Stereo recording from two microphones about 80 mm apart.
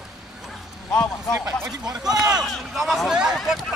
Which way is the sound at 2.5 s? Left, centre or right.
Centre.